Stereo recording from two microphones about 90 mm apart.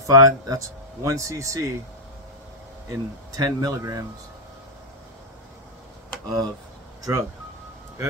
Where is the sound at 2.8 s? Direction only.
45° right (ahead or behind).